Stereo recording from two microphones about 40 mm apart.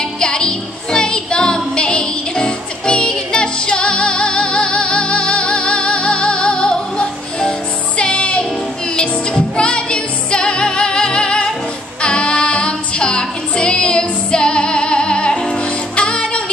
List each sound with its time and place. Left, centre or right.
0.2 s music: left
8.0 s music: left